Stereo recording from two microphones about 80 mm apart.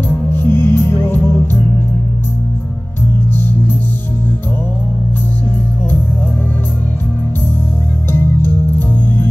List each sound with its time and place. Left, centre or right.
0.3 s music: left
8.1 s music: left